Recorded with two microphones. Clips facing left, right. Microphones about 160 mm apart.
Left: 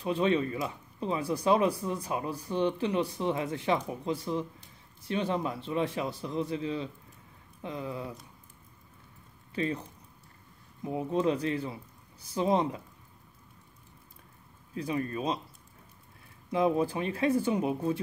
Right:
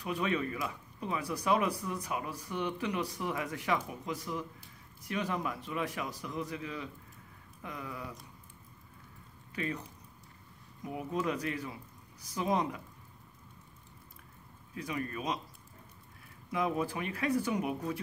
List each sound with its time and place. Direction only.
0.0 s speech: 30° left (ahead or behind)
9.6 s speech: 30° left (ahead or behind)
14.8 s speech: 30° left (ahead or behind)
16.4 s speech: 30° left (ahead or behind)